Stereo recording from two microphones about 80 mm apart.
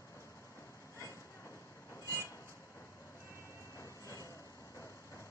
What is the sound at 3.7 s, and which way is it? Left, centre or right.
Vehicle, left.